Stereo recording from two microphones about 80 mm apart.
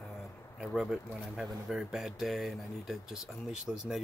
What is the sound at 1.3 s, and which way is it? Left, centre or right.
Speech, centre.